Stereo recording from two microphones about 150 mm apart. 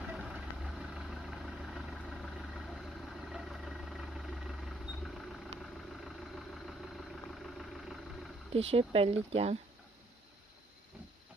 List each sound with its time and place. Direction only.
0.0 s vehicle: 5° right (ahead or behind)
8.7 s speech: 40° right (ahead or behind)